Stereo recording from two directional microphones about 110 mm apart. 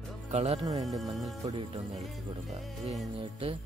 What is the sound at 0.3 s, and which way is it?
Speech, 80° right.